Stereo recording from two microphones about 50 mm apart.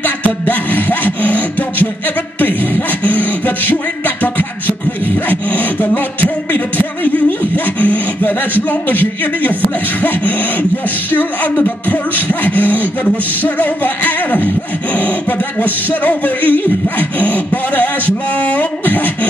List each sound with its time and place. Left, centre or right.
0.0 s music: left
2.4 s beatboxing: left
7.5 s sawing: left
8.8 s beatboxing: left
11.1 s beatboxing: left